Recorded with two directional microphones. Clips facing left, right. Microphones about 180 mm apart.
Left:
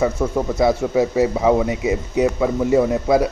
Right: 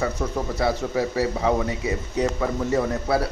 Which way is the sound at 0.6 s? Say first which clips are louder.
Left 7 dB; 15° left (ahead or behind).